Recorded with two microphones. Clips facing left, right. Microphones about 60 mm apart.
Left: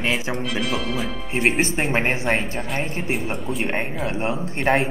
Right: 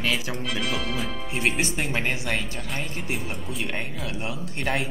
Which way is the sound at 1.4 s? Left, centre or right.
Left.